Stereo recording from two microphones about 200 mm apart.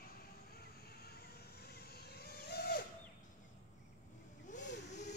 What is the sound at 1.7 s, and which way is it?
Vehicle, 50° left (ahead or behind).